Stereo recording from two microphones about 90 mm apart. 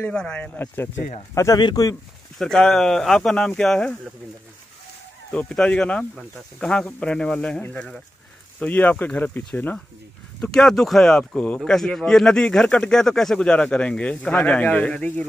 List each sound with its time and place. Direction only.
0.1 s speech: 10° left (ahead or behind)
1.3 s speech: 35° left (ahead or behind)
1.6 s speech: 50° left (ahead or behind)
2.3 s speech: 5° left (ahead or behind)
5.3 s speech: 10° left (ahead or behind)
10.4 s speech: 5° left (ahead or behind)